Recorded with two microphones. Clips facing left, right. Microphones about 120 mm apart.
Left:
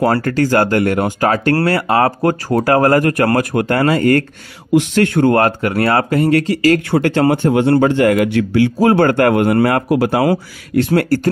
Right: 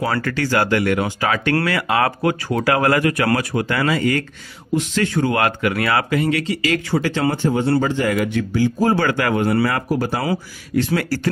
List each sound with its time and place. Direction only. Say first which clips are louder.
0.1 s speech: left 6 dB; 40° left (ahead or behind)
4.7 s a man's voice: left 7 dB; 60° left (ahead or behind)
5.4 s speech: left 5 dB; 40° left (ahead or behind)
6.9 s a man's voice: left 6 dB; 55° left (ahead or behind)
7.8 s a man's voice: left 7 dB; 65° left (ahead or behind)
9.0 s a man's voice: left 7 dB; 55° left (ahead or behind)
9.8 s speech: left 7 dB; 90° left
10.2 s speech: left 7 dB; 50° left (ahead or behind)